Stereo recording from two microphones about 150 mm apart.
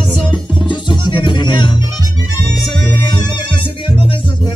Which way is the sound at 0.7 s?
35° left (ahead or behind).